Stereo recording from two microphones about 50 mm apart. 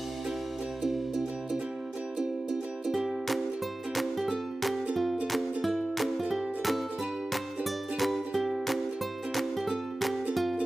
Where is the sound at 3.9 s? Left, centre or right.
Centre.